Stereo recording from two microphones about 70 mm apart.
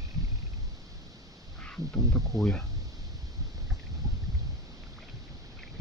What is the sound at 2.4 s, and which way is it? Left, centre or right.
Speech, centre.